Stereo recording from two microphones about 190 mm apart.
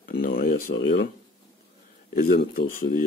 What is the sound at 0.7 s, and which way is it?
Speech, 65° left (ahead or behind).